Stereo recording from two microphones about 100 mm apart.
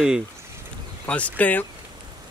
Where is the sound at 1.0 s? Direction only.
15° left (ahead or behind).